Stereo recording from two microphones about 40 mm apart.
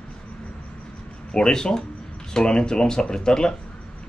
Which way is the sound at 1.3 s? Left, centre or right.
Centre.